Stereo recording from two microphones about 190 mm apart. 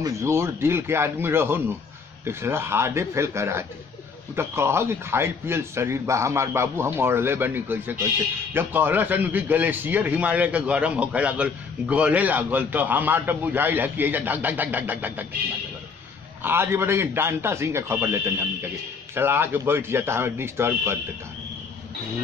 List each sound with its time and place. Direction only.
0.0 s a man's voice: 15° right (ahead or behind)
16.4 s a man's voice: 10° right (ahead or behind)